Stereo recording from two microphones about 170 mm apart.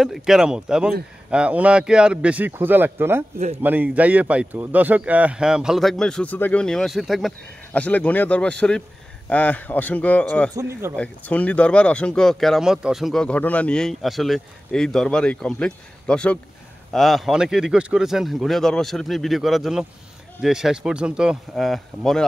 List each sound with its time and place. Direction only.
0.0 s speech: 5° right (ahead or behind)
10.5 s speech: 15° right (ahead or behind)
11.0 s speech: 10° left (ahead or behind)